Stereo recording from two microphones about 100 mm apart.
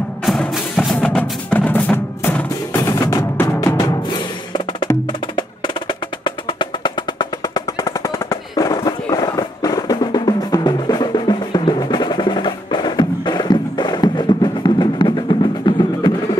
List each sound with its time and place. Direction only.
0.2 s music: centre (ahead or behind)
1.5 s music: 15° left (ahead or behind)
2.8 s music: 30° left (ahead or behind)
5.9 s music: 50° left (ahead or behind)